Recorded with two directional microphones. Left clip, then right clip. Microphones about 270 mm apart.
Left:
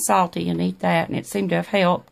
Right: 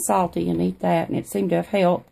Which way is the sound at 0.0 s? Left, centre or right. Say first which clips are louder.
Left 2 dB; left.